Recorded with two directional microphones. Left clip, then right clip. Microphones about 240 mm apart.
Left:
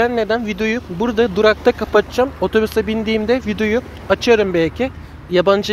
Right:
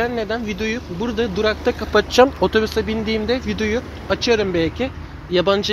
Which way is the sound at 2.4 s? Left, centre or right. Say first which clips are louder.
Left 2 dB; centre.